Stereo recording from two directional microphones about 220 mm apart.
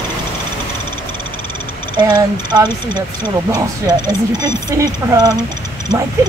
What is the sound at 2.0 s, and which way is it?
Speech, 20° right (ahead or behind).